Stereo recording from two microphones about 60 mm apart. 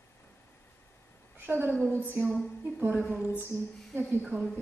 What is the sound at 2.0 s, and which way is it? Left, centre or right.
Speech, right.